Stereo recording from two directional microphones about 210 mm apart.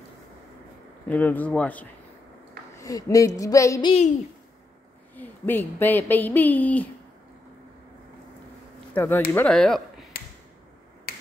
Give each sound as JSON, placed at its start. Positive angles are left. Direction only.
{"t": 1.0, "sound": "speech", "side_deg": 10}
{"t": 5.1, "sound": "speech", "side_deg": 10}
{"t": 8.9, "sound": "speech", "side_deg": 10}